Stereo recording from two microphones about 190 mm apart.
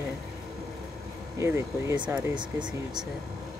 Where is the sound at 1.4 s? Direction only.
15° right (ahead or behind).